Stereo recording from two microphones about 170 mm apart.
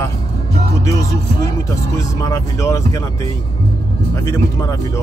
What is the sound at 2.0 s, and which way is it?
Speech, 20° left (ahead or behind).